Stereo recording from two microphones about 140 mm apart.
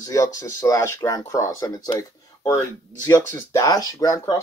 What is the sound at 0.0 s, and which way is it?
Speech, 25° left (ahead or behind).